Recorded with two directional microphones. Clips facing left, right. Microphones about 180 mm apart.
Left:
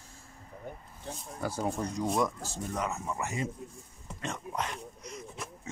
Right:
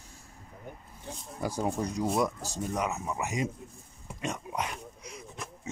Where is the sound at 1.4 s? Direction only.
15° right (ahead or behind).